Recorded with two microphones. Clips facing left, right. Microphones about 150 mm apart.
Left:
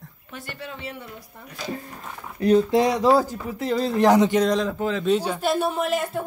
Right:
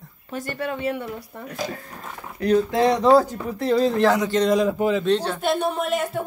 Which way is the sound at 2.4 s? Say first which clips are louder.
Left 2 dB; 20° left (ahead or behind).